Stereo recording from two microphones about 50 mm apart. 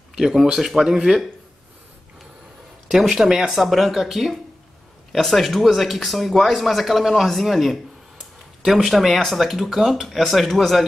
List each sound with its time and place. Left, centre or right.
0.1 s speech: centre
2.9 s speech: centre